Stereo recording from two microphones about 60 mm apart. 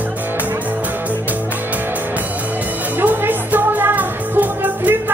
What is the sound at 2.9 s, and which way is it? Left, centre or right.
Music, right.